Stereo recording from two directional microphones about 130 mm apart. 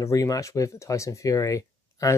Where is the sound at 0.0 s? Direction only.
25° left (ahead or behind).